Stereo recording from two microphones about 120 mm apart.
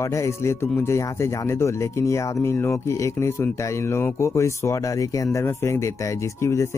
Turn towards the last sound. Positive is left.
turn(degrees=20)  # may be behind; listen again after turning